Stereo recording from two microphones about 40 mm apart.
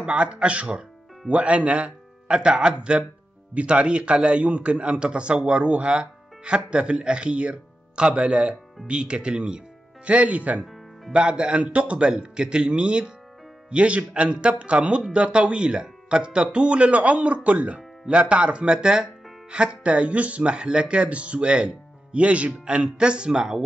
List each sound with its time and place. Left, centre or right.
0.0 s a man's voice: right
10.0 s a man's voice: right